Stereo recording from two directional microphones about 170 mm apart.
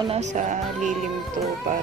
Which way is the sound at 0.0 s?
40° right (ahead or behind).